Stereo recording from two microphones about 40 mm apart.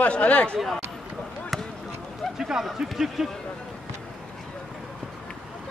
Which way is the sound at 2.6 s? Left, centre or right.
Centre.